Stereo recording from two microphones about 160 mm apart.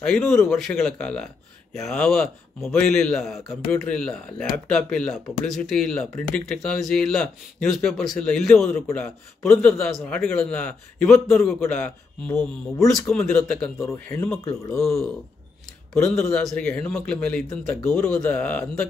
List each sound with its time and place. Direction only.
0.0 s speech: 5° left (ahead or behind)
15.9 s speech: 5° left (ahead or behind)
16.2 s speech: 15° left (ahead or behind)